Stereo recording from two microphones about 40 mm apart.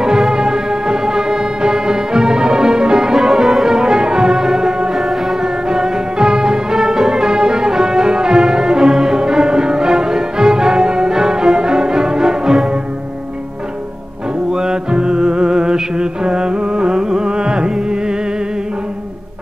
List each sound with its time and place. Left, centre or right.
0.3 s music: centre
3.5 s brass instrument: centre
4.9 s music: centre
14.5 s music: centre